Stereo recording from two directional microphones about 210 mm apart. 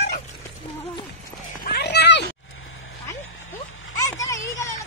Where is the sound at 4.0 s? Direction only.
15° left (ahead or behind).